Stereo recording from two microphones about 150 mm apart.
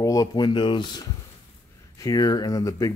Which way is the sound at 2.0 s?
25° left (ahead or behind).